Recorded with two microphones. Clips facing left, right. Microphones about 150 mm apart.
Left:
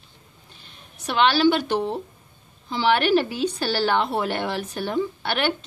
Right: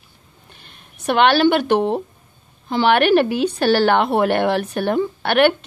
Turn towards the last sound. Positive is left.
turn(degrees=-60)  # may be behind; listen again after turning